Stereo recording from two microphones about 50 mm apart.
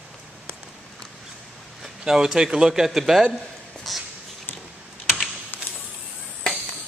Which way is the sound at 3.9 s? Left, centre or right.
Centre.